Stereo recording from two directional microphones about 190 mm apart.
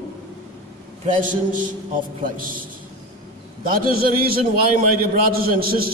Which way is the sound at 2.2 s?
45° right (ahead or behind).